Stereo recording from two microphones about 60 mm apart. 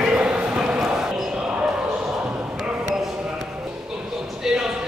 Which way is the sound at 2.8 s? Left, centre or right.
Centre.